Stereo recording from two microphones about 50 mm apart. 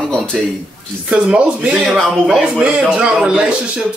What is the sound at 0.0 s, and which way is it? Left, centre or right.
Speech, centre.